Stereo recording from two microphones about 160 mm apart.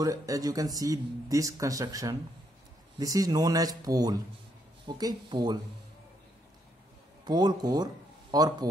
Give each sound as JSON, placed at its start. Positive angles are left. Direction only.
{"t": 0.0, "sound": "speech", "side_deg": -20}
{"t": 7.2, "sound": "speech", "side_deg": -25}